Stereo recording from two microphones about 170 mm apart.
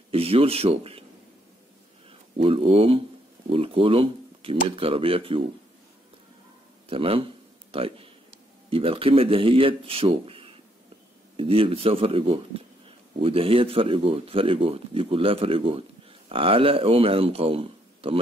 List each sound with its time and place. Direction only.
0.1 s speech: 35° right (ahead or behind)
2.0 s speech: 35° right (ahead or behind)
6.9 s speech: 35° right (ahead or behind)